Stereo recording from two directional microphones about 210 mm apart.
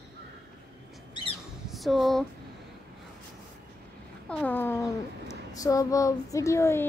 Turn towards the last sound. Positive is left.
turn(degrees=15)  # may be behind; listen again after turning